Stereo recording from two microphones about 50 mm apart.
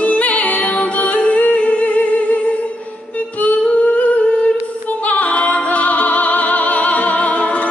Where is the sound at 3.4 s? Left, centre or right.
Left.